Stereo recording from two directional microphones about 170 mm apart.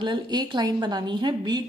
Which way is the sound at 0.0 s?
25° right (ahead or behind).